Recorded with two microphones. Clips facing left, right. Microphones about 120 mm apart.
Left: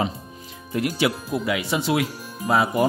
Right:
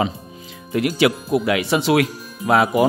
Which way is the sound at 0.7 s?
90° right.